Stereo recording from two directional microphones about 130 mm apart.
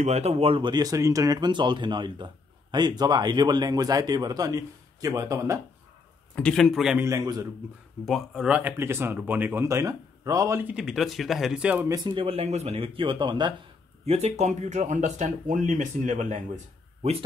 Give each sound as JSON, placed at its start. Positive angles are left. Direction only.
{"t": 0.0, "sound": "speech", "side_deg": -60}
{"t": 6.3, "sound": "a man's voice", "side_deg": 5}
{"t": 7.0, "sound": "a man's voice", "side_deg": -25}
{"t": 8.0, "sound": "speech", "side_deg": 0}
{"t": 11.9, "sound": "speech", "side_deg": -35}
{"t": 14.0, "sound": "speech", "side_deg": -55}